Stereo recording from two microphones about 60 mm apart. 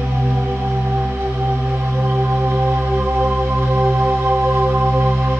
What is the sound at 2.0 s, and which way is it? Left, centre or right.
Music, right.